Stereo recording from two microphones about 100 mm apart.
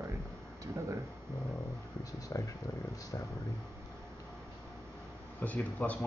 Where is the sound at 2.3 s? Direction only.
30° left (ahead or behind).